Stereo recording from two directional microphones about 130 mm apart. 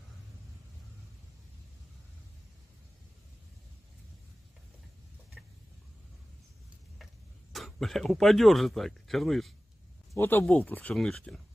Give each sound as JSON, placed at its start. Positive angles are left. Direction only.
{"t": 7.5, "sound": "speech", "side_deg": 0}
{"t": 10.1, "sound": "speech", "side_deg": 15}